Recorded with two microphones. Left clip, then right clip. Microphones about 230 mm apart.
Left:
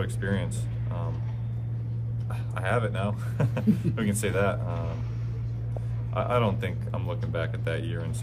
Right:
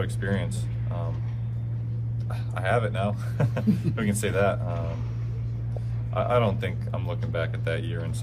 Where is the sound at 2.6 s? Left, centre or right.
Centre.